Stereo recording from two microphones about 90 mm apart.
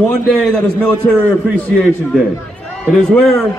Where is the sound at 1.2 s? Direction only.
20° left (ahead or behind).